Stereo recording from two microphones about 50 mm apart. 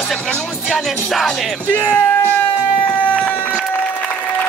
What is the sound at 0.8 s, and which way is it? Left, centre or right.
Speech, centre.